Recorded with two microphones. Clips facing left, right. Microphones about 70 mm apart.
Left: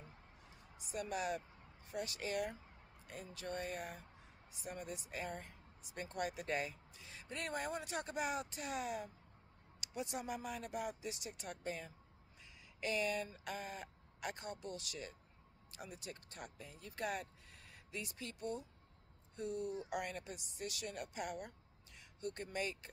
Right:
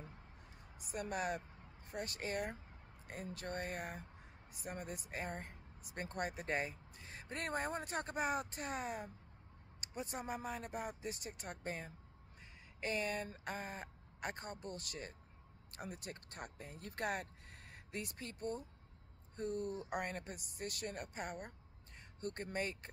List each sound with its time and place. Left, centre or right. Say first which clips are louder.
0.8 s speech: even; right